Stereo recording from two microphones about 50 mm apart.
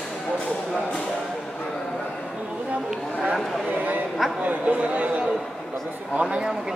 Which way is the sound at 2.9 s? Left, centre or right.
Centre.